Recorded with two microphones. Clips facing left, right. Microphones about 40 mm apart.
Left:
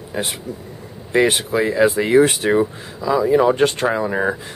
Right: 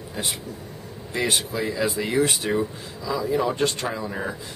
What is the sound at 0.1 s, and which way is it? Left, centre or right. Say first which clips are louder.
Speech: left 6 dB; left.